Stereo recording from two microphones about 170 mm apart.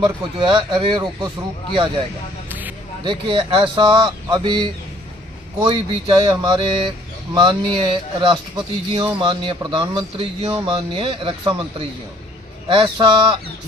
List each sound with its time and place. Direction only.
0.0 s speech: 25° right (ahead or behind)
3.0 s speech: 25° right (ahead or behind)
12.6 s speech: 30° right (ahead or behind)